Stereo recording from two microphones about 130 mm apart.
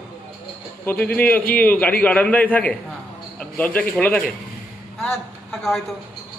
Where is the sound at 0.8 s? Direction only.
10° left (ahead or behind).